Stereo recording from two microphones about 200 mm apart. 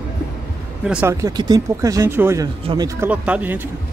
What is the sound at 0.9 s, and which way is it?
Speech, 10° right (ahead or behind).